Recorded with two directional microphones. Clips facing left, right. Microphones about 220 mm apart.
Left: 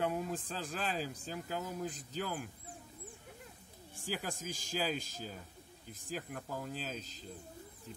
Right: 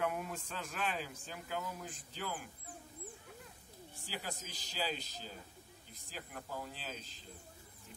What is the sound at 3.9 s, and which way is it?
A man's voice, 45° left (ahead or behind).